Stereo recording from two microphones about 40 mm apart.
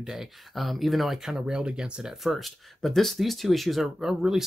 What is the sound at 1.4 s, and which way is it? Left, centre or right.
Speech, centre.